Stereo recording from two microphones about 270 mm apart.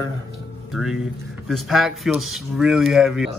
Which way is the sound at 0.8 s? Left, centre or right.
Centre.